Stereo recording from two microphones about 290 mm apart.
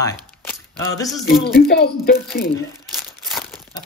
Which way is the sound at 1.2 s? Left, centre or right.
Left.